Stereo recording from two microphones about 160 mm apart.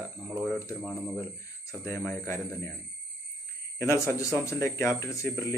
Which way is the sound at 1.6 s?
15° left (ahead or behind).